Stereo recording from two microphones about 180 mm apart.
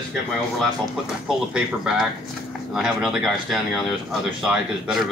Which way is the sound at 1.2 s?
5° right (ahead or behind).